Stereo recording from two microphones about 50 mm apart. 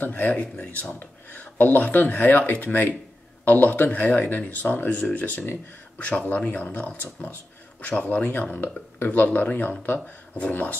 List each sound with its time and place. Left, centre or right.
0.0 s speech: left